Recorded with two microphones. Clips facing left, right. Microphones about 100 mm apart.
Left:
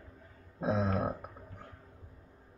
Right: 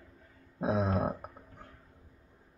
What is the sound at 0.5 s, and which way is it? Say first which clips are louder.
Speech: right 1 dB; 10° right (ahead or behind).